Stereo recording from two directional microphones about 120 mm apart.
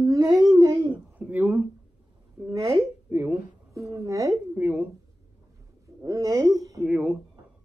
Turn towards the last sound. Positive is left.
turn(degrees=-10)  # may be behind; listen again after turning